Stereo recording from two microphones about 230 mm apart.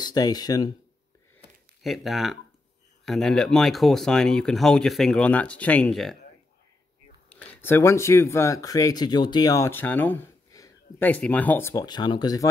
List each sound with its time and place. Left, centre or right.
0.0 s speech: centre
1.8 s speech: centre
7.3 s a sound: centre
7.6 s speech: centre